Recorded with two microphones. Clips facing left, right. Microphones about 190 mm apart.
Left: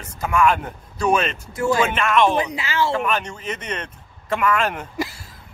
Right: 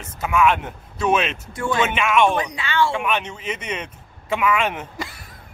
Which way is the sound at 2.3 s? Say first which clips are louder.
Even; 25° left (ahead or behind).